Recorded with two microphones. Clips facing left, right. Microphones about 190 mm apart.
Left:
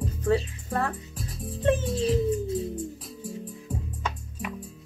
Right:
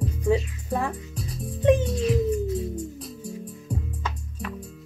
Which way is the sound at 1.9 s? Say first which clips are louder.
Right 1 dB; 30° left (ahead or behind).